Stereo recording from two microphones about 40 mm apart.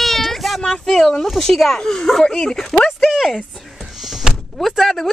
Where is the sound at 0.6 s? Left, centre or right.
Centre.